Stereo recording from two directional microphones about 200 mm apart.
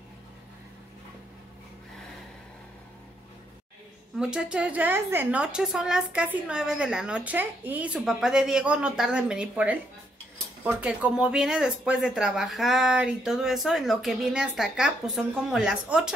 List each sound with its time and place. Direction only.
4.2 s a woman's voice: 5° right (ahead or behind)